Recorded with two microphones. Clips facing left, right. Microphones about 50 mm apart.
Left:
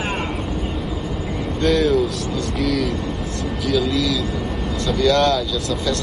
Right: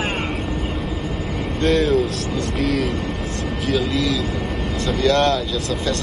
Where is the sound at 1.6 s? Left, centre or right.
Centre.